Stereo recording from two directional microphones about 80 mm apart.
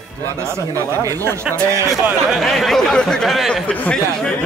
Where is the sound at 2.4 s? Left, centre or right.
Centre.